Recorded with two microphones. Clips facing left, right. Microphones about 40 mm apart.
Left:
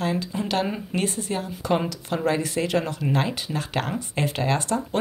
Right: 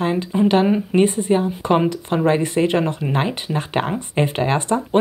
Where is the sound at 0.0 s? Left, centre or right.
Right.